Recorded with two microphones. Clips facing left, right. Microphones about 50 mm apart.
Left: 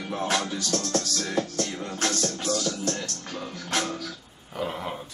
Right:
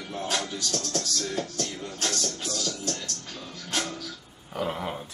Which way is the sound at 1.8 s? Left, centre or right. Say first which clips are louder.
Left 3 dB; left.